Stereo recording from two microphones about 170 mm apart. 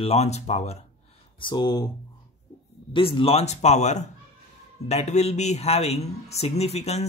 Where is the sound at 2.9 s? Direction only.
30° left (ahead or behind).